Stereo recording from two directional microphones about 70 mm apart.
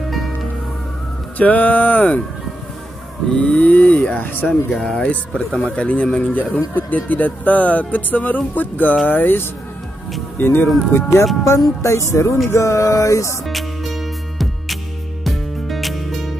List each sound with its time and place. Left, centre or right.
0.1 s music: centre
1.4 s speech: left
3.3 s speech: centre
4.5 s speech: centre; by 11.2 s left
11.8 s music: left
13.5 s music: centre